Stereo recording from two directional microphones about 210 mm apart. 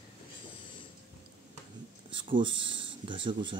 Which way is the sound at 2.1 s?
25° right (ahead or behind).